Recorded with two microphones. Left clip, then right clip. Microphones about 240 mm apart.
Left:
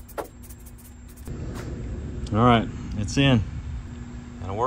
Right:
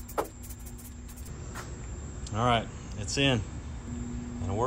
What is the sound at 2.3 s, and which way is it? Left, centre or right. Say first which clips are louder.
Speech: left 7 dB; centre.